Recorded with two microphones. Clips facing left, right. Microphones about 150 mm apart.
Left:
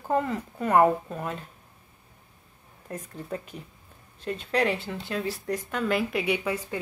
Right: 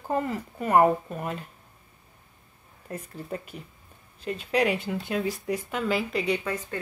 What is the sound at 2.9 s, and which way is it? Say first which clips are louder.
A woman's voice: even; 5° right (ahead or behind).